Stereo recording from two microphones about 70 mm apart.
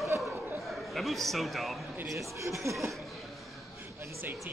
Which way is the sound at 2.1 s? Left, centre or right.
Right.